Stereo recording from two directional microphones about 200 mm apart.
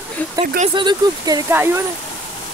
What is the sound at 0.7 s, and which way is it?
Speech, 20° right (ahead or behind).